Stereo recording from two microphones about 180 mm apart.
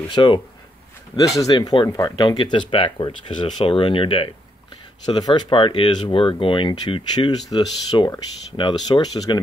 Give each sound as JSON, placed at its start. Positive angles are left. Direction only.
{"t": 0.1, "sound": "speech", "side_deg": 25}
{"t": 1.4, "sound": "speech", "side_deg": 20}